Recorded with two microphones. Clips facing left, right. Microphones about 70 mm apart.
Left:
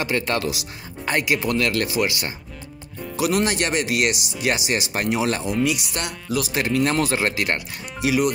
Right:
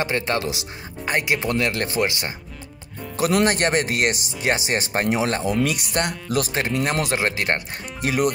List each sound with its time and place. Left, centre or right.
0.0 s speech: right
3.2 s speech: right
5.6 s speech: right
6.5 s speech: right
7.4 s speech: right
8.0 s speech: right